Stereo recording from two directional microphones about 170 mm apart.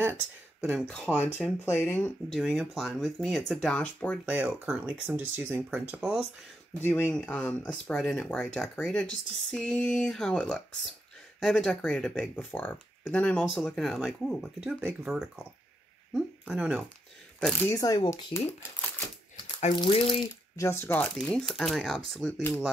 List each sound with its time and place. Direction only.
0.0 s speech: 10° right (ahead or behind)
0.8 s speech: 5° left (ahead or behind)
4.3 s speech: 5° right (ahead or behind)
6.8 s speech: 10° left (ahead or behind)
17.6 s speech: 20° left (ahead or behind)
19.7 s speech: 30° left (ahead or behind)
20.5 s speech: 15° left (ahead or behind)